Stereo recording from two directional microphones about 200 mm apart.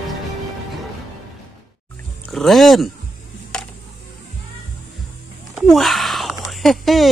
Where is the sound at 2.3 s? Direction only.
Centre (ahead or behind).